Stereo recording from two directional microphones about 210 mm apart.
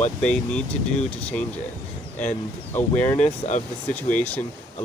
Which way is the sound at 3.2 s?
35° left (ahead or behind).